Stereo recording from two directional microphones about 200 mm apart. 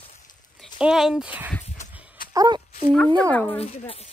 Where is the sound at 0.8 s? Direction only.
5° right (ahead or behind).